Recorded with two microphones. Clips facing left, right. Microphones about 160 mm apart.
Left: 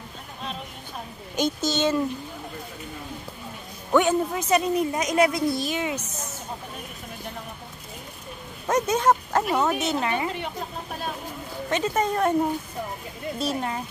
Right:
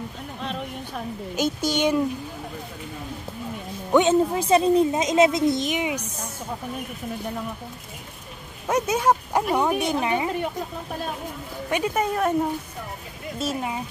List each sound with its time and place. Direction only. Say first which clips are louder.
1.3 s speech: even; 10° right (ahead or behind)
3.9 s a child's voice: right 3 dB; 20° right (ahead or behind)
8.6 s speech: even; 10° right (ahead or behind)
11.7 s speech: even; 10° right (ahead or behind)
13.4 s speech: right 1 dB; 5° right (ahead or behind)